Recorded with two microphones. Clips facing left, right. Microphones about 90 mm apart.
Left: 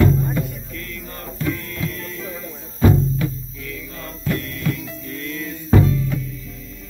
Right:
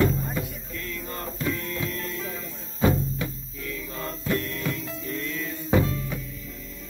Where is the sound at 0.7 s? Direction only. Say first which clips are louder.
Even; 25° right (ahead or behind).